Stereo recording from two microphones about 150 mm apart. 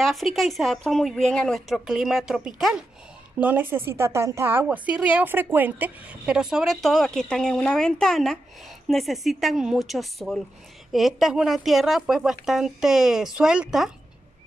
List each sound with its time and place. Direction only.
0.0 s a woman's voice: centre (ahead or behind)